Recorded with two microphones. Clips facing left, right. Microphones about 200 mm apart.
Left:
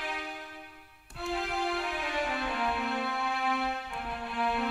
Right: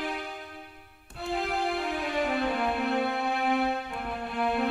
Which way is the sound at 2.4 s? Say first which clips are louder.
Right 5 dB; 35° right (ahead or behind).